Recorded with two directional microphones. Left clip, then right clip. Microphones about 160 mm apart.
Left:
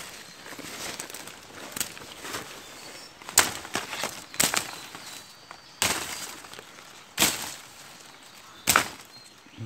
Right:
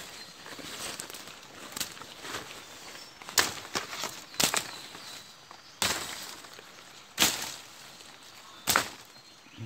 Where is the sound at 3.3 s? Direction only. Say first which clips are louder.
Left 4 dB; 55° left (ahead or behind).